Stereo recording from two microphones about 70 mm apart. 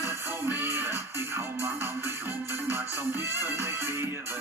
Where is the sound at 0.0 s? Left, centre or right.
Right.